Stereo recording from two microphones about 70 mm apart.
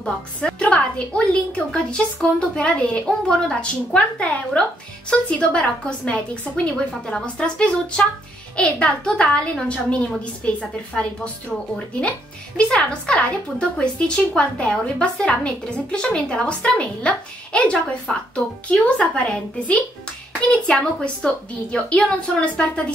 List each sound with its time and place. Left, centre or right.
0.0 s speech: centre